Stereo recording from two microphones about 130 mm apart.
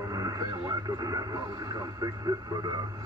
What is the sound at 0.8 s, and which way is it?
Speech, 30° right (ahead or behind).